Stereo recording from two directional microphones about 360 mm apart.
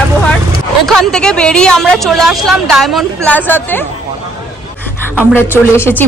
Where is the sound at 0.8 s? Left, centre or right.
Centre.